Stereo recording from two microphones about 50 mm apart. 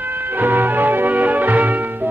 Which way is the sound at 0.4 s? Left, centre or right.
Right.